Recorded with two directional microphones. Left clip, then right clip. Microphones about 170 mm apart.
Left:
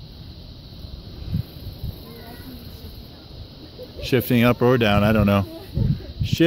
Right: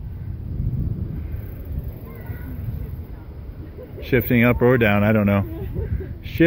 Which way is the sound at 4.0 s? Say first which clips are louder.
Right 1 dB; 30° left (ahead or behind).